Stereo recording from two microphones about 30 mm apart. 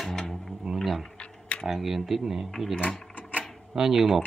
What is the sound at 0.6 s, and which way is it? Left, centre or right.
Speech, centre.